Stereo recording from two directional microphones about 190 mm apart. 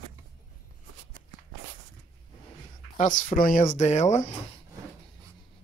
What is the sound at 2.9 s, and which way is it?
Speech, 40° left (ahead or behind).